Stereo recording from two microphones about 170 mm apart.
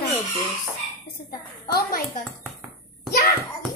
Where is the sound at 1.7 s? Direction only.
60° left (ahead or behind).